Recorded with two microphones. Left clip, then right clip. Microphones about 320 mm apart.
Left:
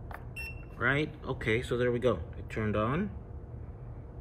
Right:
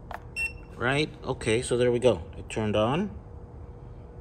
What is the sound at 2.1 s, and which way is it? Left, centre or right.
Speech, right.